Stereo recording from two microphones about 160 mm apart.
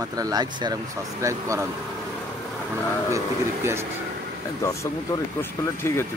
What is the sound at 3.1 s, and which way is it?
Speech, 15° right (ahead or behind).